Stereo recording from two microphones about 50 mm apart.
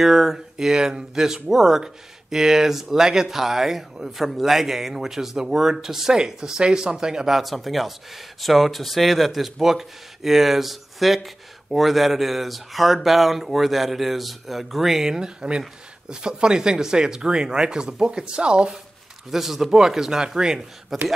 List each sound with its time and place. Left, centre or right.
0.0 s speech: centre
19.3 s speech: centre